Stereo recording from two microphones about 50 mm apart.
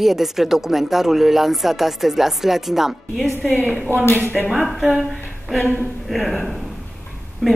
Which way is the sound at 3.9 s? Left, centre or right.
Left.